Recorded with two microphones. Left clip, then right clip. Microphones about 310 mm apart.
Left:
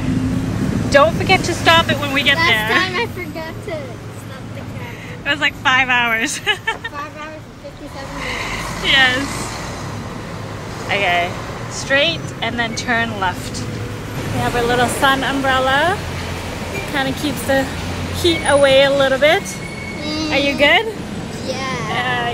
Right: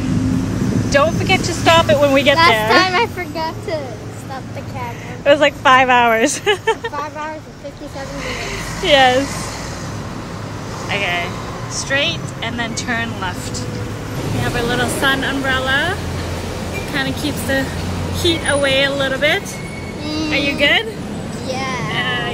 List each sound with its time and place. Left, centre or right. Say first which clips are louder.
0.8 s speech: left 3 dB; centre
5.3 s speech: right 5 dB; right
8.3 s speech: left 3 dB; centre
10.9 s speech: left 3 dB; centre
14.4 s speech: left 3 dB; centre
21.5 s a child's voice: right 1 dB; centre
21.9 s music: left 2 dB; centre